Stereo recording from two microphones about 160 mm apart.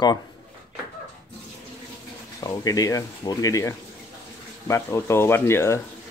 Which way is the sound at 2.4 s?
25° left (ahead or behind).